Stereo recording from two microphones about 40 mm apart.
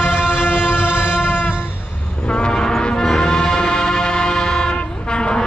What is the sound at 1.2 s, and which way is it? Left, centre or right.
Music, left.